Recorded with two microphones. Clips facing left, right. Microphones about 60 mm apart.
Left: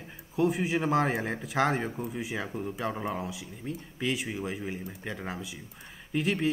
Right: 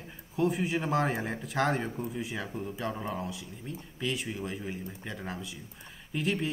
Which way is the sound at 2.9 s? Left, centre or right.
Centre.